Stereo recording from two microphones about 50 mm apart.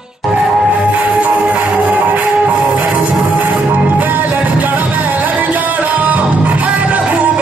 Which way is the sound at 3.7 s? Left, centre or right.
Right.